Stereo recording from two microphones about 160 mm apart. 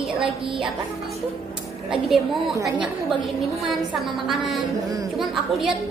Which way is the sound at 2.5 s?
20° right (ahead or behind).